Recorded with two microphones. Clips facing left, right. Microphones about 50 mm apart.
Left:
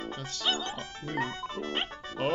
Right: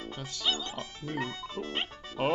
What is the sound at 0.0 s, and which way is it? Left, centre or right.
Music, left.